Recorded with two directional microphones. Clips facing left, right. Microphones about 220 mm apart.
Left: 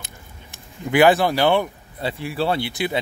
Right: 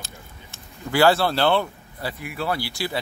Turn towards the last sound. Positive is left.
turn(degrees=20)  # may be behind; listen again after turning